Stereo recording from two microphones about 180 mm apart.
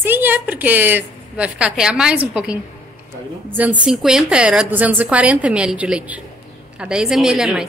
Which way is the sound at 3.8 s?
Centre (ahead or behind).